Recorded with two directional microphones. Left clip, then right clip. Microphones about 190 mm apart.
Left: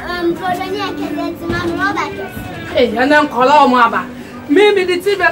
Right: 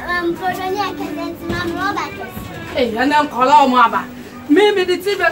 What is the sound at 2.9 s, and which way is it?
A man's voice, 25° left (ahead or behind).